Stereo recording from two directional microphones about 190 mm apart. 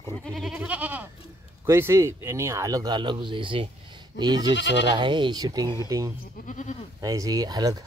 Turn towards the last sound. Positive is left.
turn(degrees=-20)  # may be behind; listen again after turning